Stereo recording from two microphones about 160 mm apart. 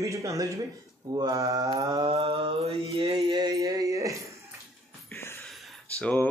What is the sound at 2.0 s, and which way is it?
Mantra, 40° right (ahead or behind).